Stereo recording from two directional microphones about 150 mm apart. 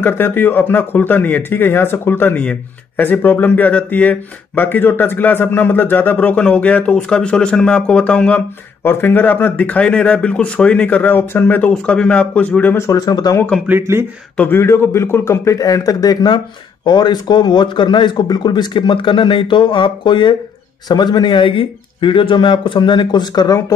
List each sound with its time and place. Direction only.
0.0 s speech: 15° left (ahead or behind)
13.7 s speech: 15° right (ahead or behind)
14.3 s speech: 10° left (ahead or behind)